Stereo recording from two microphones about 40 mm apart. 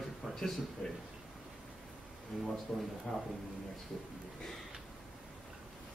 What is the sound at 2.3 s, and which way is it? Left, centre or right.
Speech, centre.